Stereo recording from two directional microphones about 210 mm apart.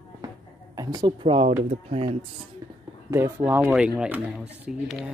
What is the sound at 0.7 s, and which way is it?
Speech, 20° right (ahead or behind).